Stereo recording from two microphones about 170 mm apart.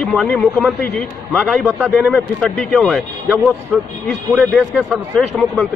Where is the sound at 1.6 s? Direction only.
10° right (ahead or behind).